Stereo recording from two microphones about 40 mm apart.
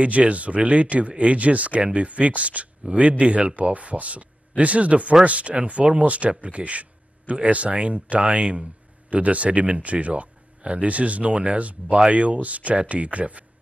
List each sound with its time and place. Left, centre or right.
0.0 s speech: right